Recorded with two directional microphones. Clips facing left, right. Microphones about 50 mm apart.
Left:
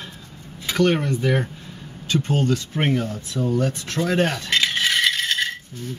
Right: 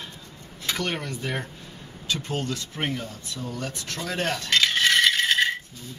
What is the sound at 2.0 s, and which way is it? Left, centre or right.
Speech, left.